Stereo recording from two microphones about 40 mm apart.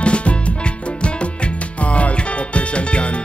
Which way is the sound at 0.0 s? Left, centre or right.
Left.